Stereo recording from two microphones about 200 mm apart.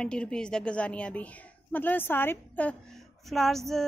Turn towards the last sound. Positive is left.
turn(degrees=0)  # may be behind; listen again after turning